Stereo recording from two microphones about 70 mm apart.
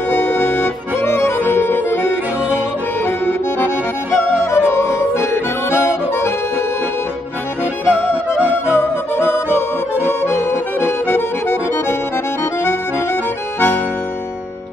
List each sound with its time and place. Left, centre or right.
0.1 s accordion: left
3.1 s accordion: left
4.5 s harmonica: left
8.7 s accordion: left